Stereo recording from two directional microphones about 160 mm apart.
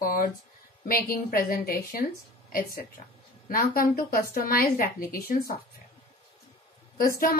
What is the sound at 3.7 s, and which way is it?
Speech, 65° left (ahead or behind).